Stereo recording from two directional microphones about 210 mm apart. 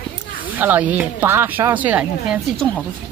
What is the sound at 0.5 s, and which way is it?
Speech, 10° right (ahead or behind).